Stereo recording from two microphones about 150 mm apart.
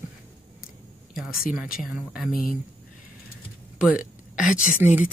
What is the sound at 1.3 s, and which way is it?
Speech, 75° left (ahead or behind).